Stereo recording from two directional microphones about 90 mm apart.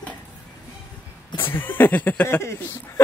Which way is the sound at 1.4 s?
25° left (ahead or behind).